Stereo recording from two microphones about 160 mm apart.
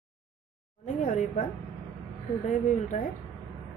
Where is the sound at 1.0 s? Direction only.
50° left (ahead or behind).